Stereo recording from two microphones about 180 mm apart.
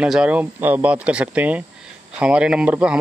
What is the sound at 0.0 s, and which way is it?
A man's voice, 5° right (ahead or behind).